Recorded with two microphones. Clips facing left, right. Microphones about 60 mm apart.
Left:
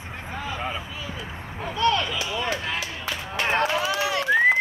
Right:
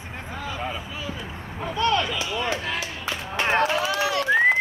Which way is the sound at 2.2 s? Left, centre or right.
Right.